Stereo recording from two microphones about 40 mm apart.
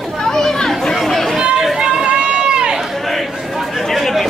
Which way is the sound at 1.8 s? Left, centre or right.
Right.